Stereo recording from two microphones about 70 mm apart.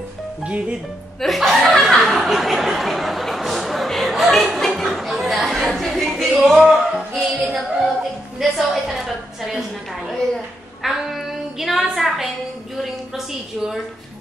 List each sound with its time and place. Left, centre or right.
0.4 s speech: centre
1.2 s a woman's voice: centre
10.8 s child singing: centre
13.1 s a woman's voice: centre